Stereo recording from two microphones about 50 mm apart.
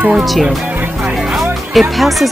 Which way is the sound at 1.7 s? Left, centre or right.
Centre.